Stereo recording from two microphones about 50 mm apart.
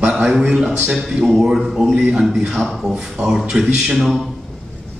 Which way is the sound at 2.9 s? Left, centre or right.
Centre.